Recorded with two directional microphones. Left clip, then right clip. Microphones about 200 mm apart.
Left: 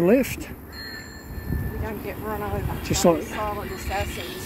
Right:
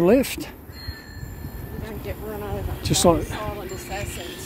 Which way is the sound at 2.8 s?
15° right (ahead or behind).